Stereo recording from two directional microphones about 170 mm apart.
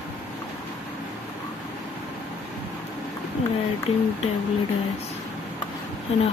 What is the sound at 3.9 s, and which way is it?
Speech, 35° left (ahead or behind).